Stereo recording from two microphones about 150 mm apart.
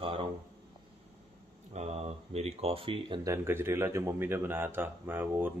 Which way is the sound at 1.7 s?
45° right (ahead or behind).